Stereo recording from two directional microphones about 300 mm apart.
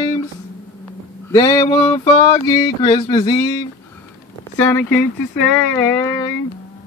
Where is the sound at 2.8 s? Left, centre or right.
Centre.